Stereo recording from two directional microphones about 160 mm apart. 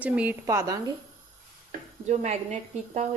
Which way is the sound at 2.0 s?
45° right (ahead or behind).